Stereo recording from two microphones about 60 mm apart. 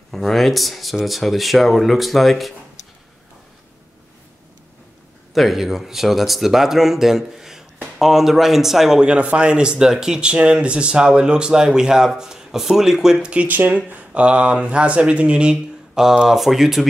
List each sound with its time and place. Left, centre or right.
0.1 s speech: centre
5.3 s speech: centre